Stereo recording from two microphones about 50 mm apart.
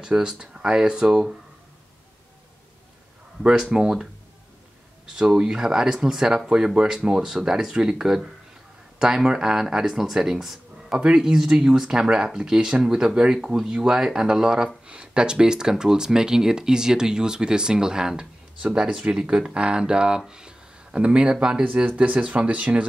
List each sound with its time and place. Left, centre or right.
0.0 s speech: centre
3.7 s speech: centre
21.6 s speech: right